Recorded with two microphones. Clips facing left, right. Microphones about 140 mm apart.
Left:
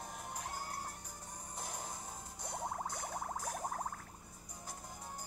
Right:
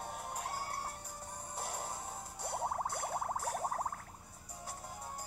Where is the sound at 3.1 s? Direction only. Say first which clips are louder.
Right 4 dB; 30° right (ahead or behind).